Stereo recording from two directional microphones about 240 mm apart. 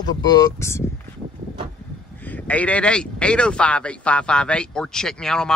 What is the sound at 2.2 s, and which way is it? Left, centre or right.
Speech, centre.